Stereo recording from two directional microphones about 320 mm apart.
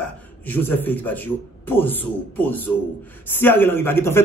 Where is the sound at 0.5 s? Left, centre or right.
Centre.